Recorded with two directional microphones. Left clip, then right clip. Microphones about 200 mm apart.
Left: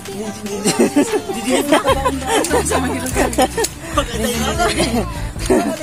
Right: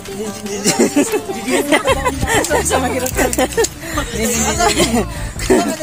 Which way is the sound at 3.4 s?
15° right (ahead or behind).